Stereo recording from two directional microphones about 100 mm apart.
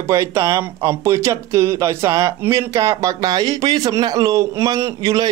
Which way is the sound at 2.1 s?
40° right (ahead or behind).